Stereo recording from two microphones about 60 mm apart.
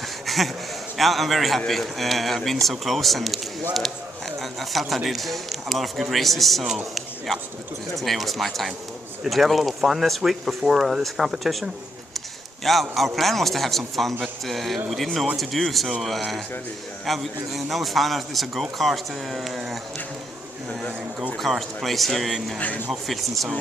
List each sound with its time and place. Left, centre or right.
0.9 s a man's voice: centre
4.4 s a man's voice: centre
7.9 s a man's voice: centre
21.4 s a man's voice: centre
22.6 s speech: left
23.0 s a man's voice: centre